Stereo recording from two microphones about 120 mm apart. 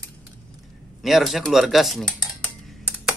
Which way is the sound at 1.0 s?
Centre (ahead or behind).